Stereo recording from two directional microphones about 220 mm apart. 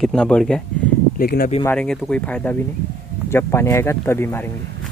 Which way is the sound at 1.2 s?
40° left (ahead or behind).